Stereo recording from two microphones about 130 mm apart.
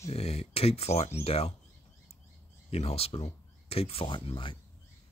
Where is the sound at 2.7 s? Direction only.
50° left (ahead or behind).